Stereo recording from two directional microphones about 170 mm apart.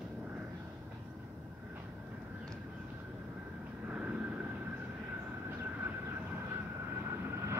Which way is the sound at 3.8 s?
10° right (ahead or behind).